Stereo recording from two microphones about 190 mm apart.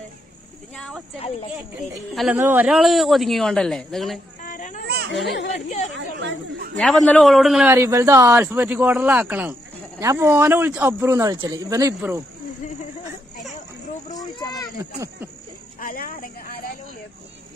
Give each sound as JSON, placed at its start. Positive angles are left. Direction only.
{"t": 0.7, "sound": "a sound", "side_deg": 0}
{"t": 2.3, "sound": "speech", "side_deg": -10}
{"t": 4.4, "sound": "children playing", "side_deg": 45}
{"t": 5.1, "sound": "a child's voice", "side_deg": 65}
{"t": 5.9, "sound": "speech", "side_deg": -70}
{"t": 6.8, "sound": "speech", "side_deg": 0}
{"t": 7.7, "sound": "speech", "side_deg": -15}
{"t": 14.1, "sound": "a sound", "side_deg": 20}
{"t": 14.8, "sound": "speech", "side_deg": -15}
{"t": 15.8, "sound": "a sound", "side_deg": 50}